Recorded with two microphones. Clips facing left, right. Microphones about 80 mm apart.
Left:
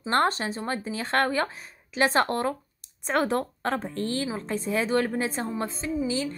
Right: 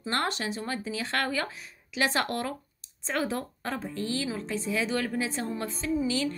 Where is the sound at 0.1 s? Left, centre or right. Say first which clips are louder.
Left 6 dB; left.